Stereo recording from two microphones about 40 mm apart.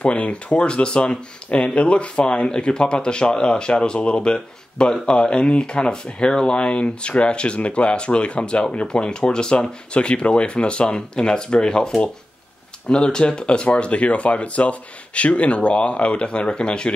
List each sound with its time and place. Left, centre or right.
0.0 s speech: left